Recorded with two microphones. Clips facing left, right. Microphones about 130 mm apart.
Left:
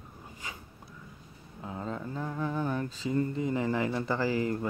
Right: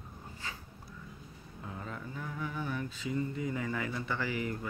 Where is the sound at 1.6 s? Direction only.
30° left (ahead or behind); by 3.3 s 45° left (ahead or behind).